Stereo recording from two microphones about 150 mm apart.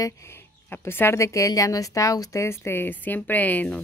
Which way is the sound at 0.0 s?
20° left (ahead or behind).